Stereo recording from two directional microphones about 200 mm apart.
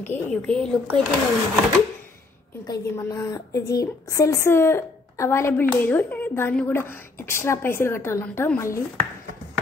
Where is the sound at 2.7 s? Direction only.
15° left (ahead or behind).